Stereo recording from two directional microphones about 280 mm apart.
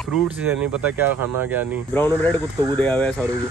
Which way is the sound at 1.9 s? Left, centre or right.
Centre.